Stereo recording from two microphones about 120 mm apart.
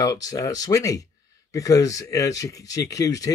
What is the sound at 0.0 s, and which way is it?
Speech, 30° left (ahead or behind).